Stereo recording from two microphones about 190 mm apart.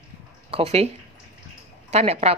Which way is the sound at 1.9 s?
35° right (ahead or behind).